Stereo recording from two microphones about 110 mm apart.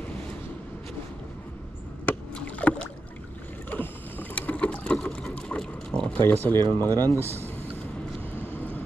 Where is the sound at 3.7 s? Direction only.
15° left (ahead or behind).